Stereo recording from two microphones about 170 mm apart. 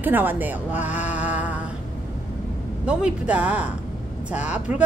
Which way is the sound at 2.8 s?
5° right (ahead or behind).